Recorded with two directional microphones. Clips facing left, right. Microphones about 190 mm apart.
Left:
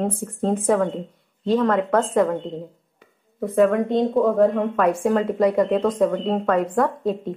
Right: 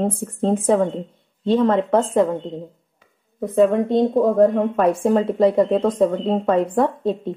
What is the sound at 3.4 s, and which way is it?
Speech, 25° right (ahead or behind).